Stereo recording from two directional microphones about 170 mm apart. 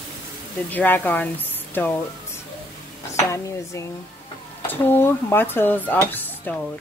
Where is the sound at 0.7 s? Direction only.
10° left (ahead or behind).